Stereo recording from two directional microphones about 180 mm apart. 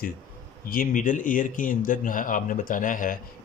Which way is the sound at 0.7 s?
45° left (ahead or behind).